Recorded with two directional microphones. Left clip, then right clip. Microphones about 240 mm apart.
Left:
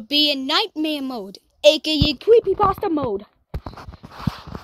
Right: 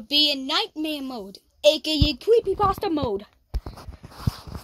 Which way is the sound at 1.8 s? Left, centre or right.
Centre.